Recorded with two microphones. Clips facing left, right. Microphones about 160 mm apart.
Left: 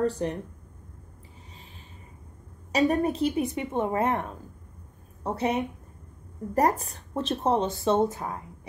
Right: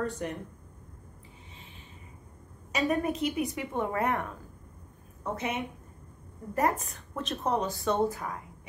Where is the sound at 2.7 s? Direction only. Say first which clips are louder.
Left 5 dB; 40° left (ahead or behind).